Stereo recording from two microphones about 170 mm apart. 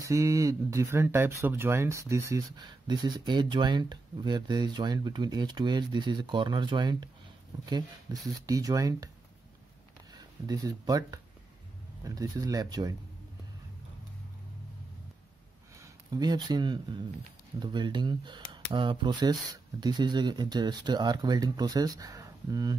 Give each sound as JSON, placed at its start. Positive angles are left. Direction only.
{"t": 0.0, "sound": "speech", "side_deg": -20}
{"t": 10.1, "sound": "speech", "side_deg": -20}
{"t": 15.8, "sound": "speech", "side_deg": -25}